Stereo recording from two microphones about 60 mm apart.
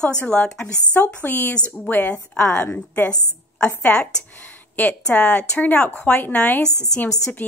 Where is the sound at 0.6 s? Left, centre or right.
Left.